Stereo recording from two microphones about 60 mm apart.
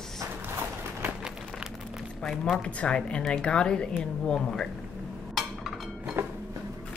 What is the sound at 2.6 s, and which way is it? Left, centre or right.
Speech, centre.